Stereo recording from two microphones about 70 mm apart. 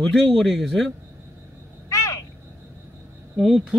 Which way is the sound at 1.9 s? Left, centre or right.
Left.